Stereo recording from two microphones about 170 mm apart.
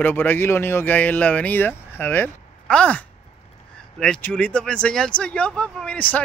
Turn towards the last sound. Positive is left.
turn(degrees=10)  # may be behind; listen again after turning